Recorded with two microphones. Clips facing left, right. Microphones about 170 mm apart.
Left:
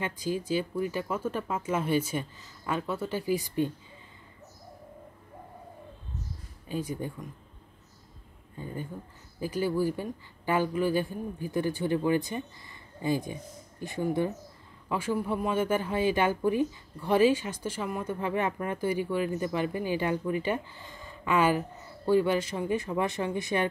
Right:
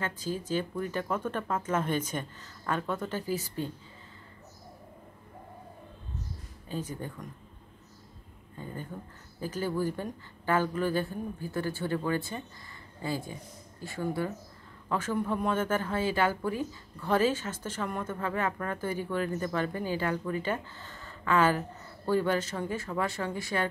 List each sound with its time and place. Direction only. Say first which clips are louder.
0.0 s speech: left 3 dB; 15° left (ahead or behind)
6.7 s speech: left 3 dB; 10° left (ahead or behind)
9.4 s speech: left 3 dB; 10° left (ahead or behind)